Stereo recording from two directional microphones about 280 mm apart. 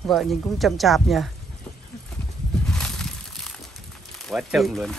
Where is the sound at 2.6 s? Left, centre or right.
Centre.